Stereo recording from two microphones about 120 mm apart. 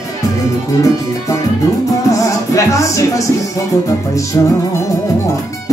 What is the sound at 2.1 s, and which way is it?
Music, 25° left (ahead or behind).